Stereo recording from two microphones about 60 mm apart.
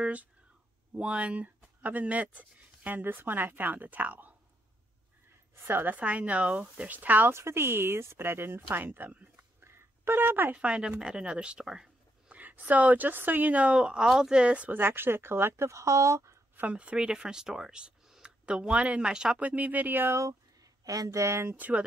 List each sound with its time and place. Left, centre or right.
0.0 s speech: right
5.6 s a woman's voice: right
5.9 s speech: right
7.3 s speech: right
8.6 s speech: right
9.6 s a sound: right
10.5 s speech: centre
12.3 s speech: right
14.8 s speech: right
16.7 s speech: centre
19.4 s speech: right
20.1 s speech: right
20.8 s speech: right
21.5 s speech: right